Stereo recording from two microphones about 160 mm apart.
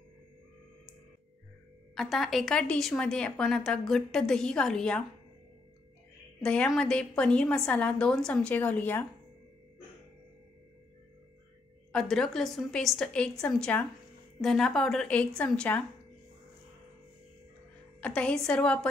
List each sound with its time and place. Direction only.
2.0 s a woman's voice: centre (ahead or behind)
6.4 s a woman's voice: 5° left (ahead or behind)
11.9 s a woman's voice: 5° left (ahead or behind)
18.0 s a woman's voice: 5° left (ahead or behind)